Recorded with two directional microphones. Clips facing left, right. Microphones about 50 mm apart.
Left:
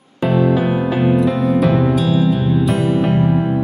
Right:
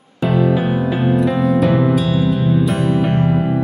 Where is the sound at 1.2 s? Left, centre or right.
Centre.